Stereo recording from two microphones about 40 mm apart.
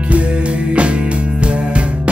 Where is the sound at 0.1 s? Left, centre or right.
Right.